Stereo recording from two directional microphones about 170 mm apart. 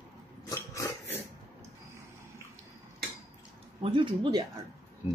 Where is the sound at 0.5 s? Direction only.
20° left (ahead or behind).